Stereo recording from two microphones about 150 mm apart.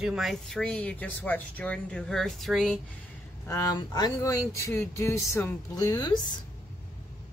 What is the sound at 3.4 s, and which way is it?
Speech, 20° left (ahead or behind).